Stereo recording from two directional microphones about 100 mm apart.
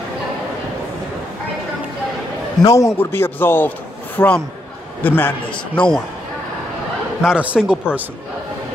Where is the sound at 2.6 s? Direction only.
30° left (ahead or behind).